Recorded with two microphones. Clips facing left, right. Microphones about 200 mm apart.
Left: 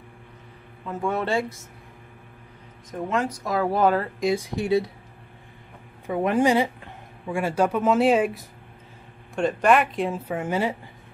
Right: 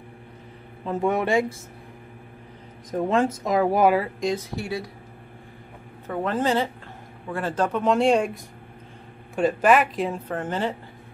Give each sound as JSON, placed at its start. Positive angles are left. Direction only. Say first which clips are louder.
{"t": 1.0, "sound": "speech", "louder": "right 3 dB", "side_deg": -15}
{"t": 2.9, "sound": "speech", "louder": "right 4 dB", "side_deg": -30}
{"t": 3.4, "sound": "speech", "louder": "right 1 dB", "side_deg": -15}
{"t": 4.2, "sound": "speech", "louder": "left 2 dB", "side_deg": 5}
{"t": 4.6, "sound": "speech", "louder": "left 8 dB", "side_deg": 20}
{"t": 6.0, "sound": "speech", "louder": "left 3 dB", "side_deg": 15}